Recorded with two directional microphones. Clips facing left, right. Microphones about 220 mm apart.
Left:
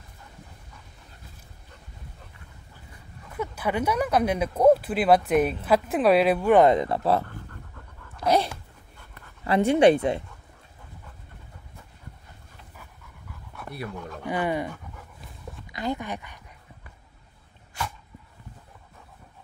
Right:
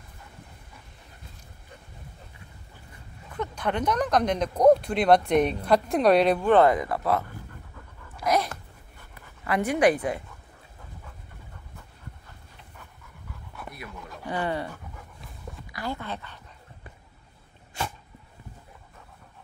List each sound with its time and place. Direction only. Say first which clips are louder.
3.3 s speech: left 1 dB; 5° left (ahead or behind)
6.7 s speech: left 3 dB; 25° left (ahead or behind)
7.2 s pant: left 1 dB; 10° right (ahead or behind)
8.2 s dog: left 2 dB; 30° left (ahead or behind)
9.4 s speech: left 4 dB; 25° left (ahead or behind)
14.2 s speech: left 2 dB; 10° left (ahead or behind)
14.7 s dog: left 2 dB; centre (ahead or behind)
15.7 s a sound: left 4 dB; 20° left (ahead or behind)
17.8 s dog: right 1 dB; 25° right (ahead or behind)